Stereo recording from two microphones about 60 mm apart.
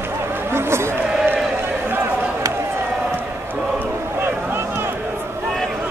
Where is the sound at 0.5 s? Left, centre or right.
Right.